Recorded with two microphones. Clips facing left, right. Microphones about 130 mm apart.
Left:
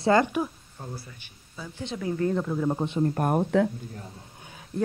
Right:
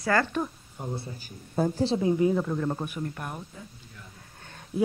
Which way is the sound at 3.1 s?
50° left (ahead or behind).